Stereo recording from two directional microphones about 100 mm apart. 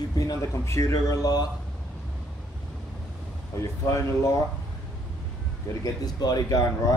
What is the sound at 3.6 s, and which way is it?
Speech, 30° left (ahead or behind).